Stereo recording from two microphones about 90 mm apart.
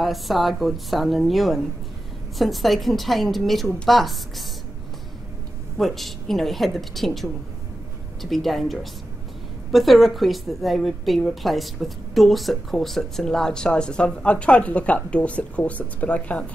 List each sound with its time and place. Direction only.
0.0 s a woman's voice: centre (ahead or behind)
5.8 s a woman's voice: centre (ahead or behind)